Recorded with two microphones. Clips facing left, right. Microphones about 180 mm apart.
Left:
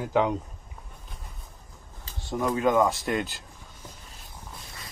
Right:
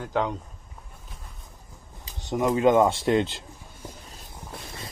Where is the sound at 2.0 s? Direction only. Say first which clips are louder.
Right 3 dB; 20° right (ahead or behind).